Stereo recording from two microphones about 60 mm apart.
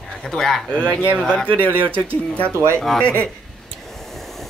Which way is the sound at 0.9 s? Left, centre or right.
Centre.